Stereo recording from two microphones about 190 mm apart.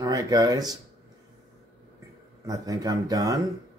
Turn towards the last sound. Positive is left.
turn(degrees=-20)  # may be behind; listen again after turning